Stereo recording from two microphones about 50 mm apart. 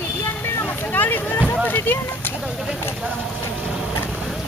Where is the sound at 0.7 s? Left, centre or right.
Left.